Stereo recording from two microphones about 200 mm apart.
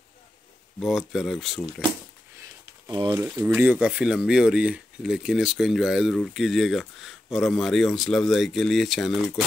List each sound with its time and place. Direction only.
0.7 s speech: centre (ahead or behind)
2.9 s speech: 20° right (ahead or behind)
3.2 s speech: 10° right (ahead or behind)